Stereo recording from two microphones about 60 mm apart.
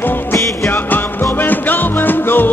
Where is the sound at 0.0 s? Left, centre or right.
Left.